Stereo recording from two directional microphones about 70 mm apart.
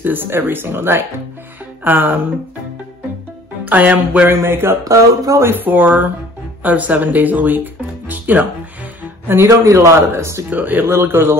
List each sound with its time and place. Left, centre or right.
0.0 s speech: right
3.6 s speech: right
4.3 s speech: right
5.5 s speech: right
9.0 s music: right
9.7 s speech: right
10.5 s speech: right